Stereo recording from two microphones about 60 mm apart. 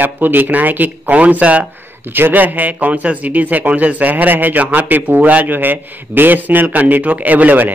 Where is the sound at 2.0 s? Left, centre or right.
Right.